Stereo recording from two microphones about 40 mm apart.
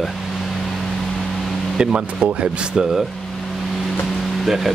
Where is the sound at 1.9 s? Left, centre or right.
Right.